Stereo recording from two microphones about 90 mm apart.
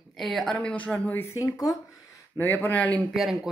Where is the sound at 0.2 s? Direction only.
5° left (ahead or behind); by 1.3 s 20° left (ahead or behind).